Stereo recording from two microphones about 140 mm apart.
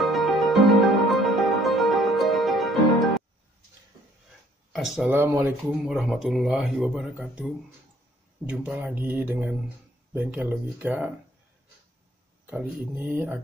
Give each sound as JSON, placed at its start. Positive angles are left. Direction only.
{"t": 0.0, "sound": "music", "side_deg": 0}
{"t": 4.7, "sound": "speech", "side_deg": 0}
{"t": 5.1, "sound": "speech", "side_deg": -15}
{"t": 12.4, "sound": "speech", "side_deg": -15}